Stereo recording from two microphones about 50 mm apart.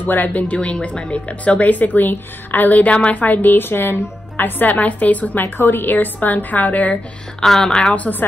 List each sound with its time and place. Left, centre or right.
0.0 s a woman's voice: left
5.4 s a woman's voice: left
7.3 s speech: centre
7.9 s a woman's voice: left